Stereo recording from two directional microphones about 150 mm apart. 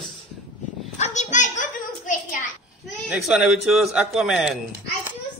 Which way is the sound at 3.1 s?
Centre (ahead or behind).